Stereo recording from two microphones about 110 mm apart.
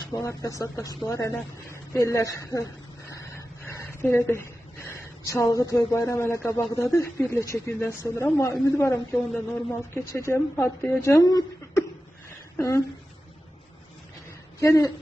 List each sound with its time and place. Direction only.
0.1 s speech: 30° left (ahead or behind)
3.3 s a sound: 25° left (ahead or behind)
6.8 s speech: 25° left (ahead or behind)
14.6 s speech: 30° left (ahead or behind)